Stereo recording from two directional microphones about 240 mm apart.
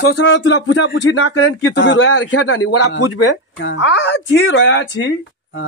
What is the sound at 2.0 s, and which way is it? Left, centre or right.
Speech, left.